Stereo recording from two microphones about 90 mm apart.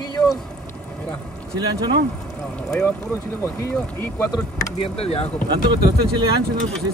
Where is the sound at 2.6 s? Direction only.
10° left (ahead or behind).